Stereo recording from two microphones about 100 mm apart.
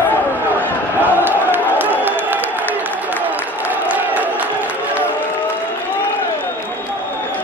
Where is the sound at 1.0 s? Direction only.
20° right (ahead or behind).